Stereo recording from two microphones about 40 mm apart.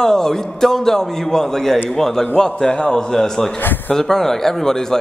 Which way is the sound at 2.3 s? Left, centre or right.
Centre.